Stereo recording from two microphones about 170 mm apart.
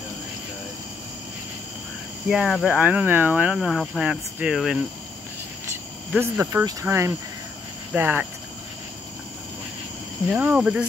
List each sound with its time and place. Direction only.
2.2 s speech: centre (ahead or behind)
6.1 s speech: 10° right (ahead or behind)
10.3 s speech: 5° right (ahead or behind)